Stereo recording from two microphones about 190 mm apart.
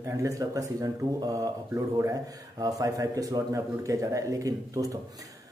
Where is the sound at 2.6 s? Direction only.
20° right (ahead or behind).